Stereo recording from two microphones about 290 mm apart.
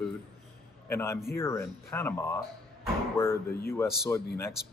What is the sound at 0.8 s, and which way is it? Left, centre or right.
Speech, centre.